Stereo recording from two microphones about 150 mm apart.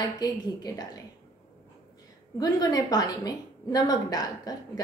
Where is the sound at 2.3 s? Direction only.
25° left (ahead or behind).